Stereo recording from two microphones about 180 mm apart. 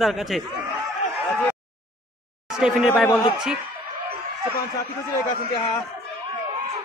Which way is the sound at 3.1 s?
25° left (ahead or behind).